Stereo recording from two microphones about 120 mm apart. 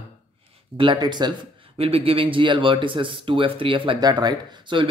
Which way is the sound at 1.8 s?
55° right (ahead or behind).